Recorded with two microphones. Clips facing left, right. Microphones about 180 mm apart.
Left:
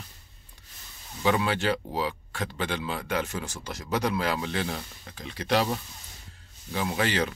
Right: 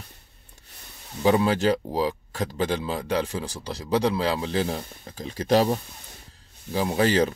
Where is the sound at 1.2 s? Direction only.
35° right (ahead or behind).